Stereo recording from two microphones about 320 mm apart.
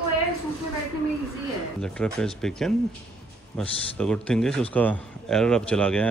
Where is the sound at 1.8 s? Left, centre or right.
Centre.